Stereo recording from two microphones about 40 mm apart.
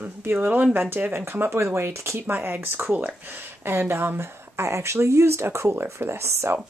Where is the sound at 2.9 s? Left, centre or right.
Right.